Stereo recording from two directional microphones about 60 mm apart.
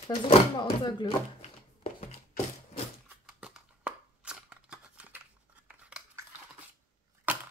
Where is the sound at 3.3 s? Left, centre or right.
Centre.